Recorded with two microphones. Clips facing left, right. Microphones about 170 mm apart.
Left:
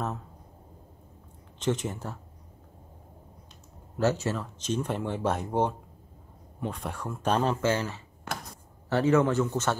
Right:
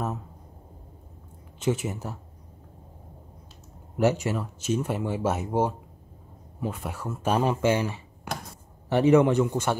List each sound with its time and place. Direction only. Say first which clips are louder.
1.6 s speech: right 2 dB; 10° right (ahead or behind)
3.9 s speech: right 3 dB; 15° right (ahead or behind)